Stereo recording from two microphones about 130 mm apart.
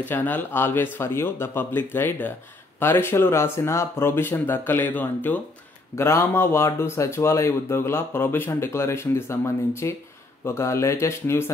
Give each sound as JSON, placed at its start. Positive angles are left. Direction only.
{"t": 0.0, "sound": "speech", "side_deg": 15}